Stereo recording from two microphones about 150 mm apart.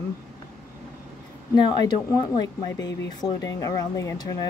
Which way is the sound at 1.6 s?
30° left (ahead or behind).